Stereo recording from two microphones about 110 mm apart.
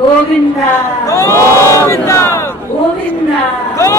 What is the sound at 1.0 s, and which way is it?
Crowd, 25° left (ahead or behind).